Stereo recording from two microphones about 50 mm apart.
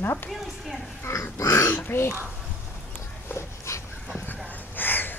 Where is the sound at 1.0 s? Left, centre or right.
Left.